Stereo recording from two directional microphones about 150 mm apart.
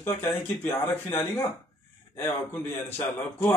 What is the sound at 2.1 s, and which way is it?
A man's voice, 15° left (ahead or behind).